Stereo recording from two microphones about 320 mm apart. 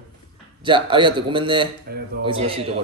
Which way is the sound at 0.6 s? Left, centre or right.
Centre.